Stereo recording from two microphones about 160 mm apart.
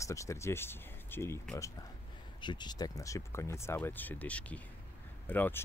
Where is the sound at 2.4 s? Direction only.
30° left (ahead or behind); by 5.7 s 10° left (ahead or behind).